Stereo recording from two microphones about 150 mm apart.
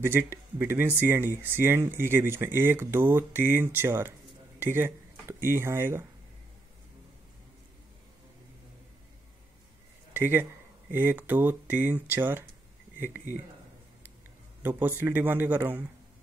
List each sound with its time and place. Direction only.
0.0 s speech: 15° right (ahead or behind)
10.9 s speech: 15° right (ahead or behind)
14.6 s speech: 15° right (ahead or behind)